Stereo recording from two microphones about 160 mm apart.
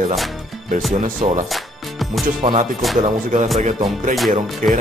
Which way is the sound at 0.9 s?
50° right (ahead or behind).